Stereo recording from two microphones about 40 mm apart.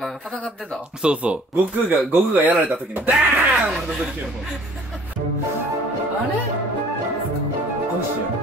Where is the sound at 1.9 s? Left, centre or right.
Right.